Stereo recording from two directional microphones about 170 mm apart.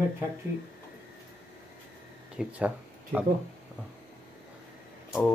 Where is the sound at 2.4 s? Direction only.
10° right (ahead or behind).